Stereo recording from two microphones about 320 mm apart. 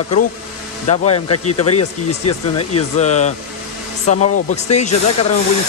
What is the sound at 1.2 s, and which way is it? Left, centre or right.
Speech, left.